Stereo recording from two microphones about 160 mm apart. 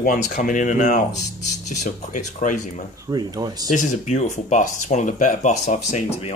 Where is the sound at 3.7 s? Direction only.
45° left (ahead or behind).